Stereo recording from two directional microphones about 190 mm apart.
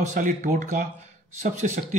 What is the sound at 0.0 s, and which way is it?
Speech, 40° right (ahead or behind).